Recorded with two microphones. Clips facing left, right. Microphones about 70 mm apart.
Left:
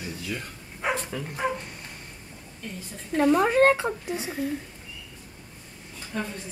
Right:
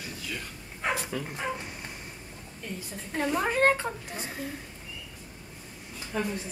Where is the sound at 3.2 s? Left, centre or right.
Left.